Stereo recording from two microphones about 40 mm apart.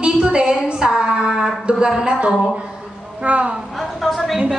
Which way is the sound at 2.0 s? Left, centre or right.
Right.